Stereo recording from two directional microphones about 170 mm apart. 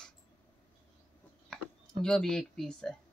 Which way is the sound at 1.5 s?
5° left (ahead or behind).